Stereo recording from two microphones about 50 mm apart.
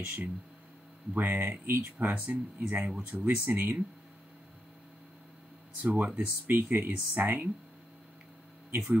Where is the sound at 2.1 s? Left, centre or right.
Right.